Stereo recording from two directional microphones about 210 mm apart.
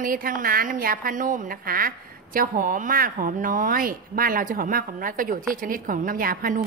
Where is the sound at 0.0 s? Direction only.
40° right (ahead or behind).